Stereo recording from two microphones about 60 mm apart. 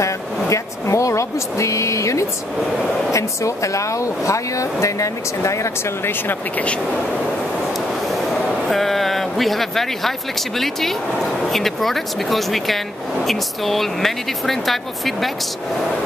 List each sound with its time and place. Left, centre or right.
0.0 s speech: left
6.0 s speech: left
8.1 s speech: centre